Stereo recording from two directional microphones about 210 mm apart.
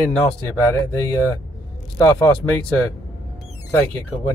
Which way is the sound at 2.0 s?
15° left (ahead or behind).